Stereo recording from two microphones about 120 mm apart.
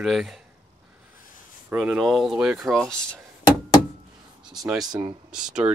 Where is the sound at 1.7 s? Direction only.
5° right (ahead or behind).